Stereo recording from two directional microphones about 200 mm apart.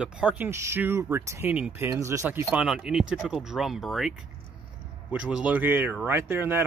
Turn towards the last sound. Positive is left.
turn(degrees=-10)  # may be behind; listen again after turning